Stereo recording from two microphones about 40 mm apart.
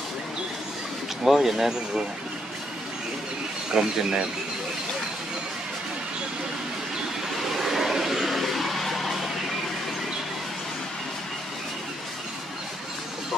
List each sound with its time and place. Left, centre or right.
1.2 s speech: centre
3.7 s speech: centre
7.5 s vehicle: centre